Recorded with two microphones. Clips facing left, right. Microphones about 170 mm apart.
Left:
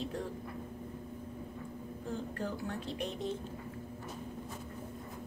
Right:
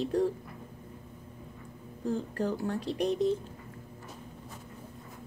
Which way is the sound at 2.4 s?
35° right (ahead or behind).